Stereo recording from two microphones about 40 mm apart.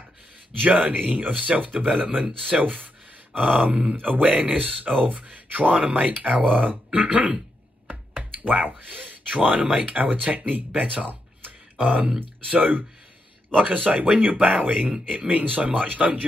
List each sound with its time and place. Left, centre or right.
0.6 s speech: right
10.8 s music: right
11.8 s speech: right